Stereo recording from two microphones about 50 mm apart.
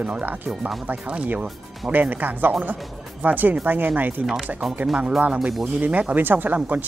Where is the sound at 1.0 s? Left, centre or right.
Right.